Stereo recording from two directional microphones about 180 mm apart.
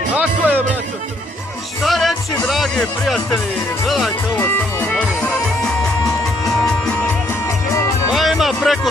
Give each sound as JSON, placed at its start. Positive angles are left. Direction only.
{"t": 0.1, "sound": "music", "side_deg": -10}
{"t": 1.8, "sound": "speech", "side_deg": 0}
{"t": 4.4, "sound": "music", "side_deg": 15}
{"t": 8.1, "sound": "music", "side_deg": 0}